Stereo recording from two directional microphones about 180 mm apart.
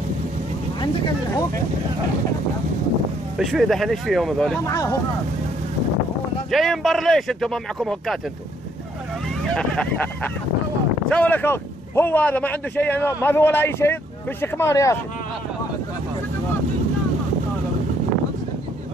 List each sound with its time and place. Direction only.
3.3 s speech: centre (ahead or behind)
6.5 s speech: centre (ahead or behind)
9.6 s speech: 5° left (ahead or behind)